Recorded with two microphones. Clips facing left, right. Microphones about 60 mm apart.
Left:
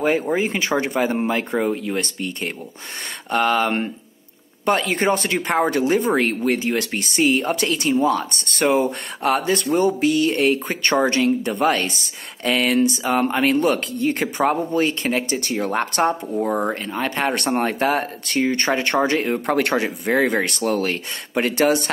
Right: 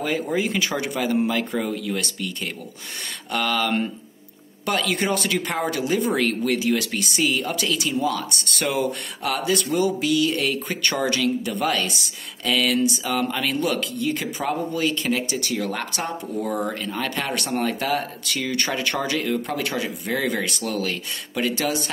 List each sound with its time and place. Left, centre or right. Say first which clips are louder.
0.0 s speech: left 4 dB; left
16.4 s speech: left 3 dB; left
17.5 s speech: left 3 dB; left
19.4 s speech: left 7 dB; left